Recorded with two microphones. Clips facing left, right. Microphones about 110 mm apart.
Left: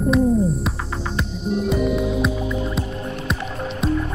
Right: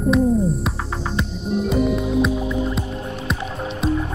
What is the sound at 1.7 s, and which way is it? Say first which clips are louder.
Music: right 2 dB; centre (ahead or behind).